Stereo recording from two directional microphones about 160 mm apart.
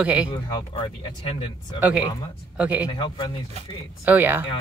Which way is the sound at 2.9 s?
30° left (ahead or behind).